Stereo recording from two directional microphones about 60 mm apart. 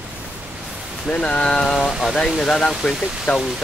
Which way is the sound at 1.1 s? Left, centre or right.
Centre.